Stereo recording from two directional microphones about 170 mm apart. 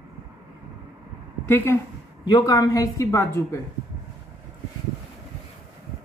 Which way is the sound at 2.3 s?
25° left (ahead or behind).